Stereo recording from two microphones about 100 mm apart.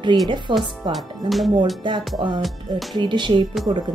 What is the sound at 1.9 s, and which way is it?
Speech, 50° right (ahead or behind).